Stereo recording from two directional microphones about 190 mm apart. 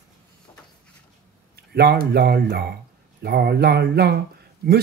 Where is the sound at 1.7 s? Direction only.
55° right (ahead or behind).